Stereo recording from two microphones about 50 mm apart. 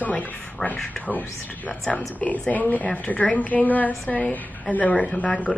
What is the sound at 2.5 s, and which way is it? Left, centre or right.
A woman's voice, left.